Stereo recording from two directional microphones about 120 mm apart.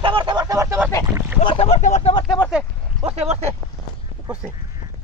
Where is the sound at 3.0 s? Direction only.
60° right (ahead or behind).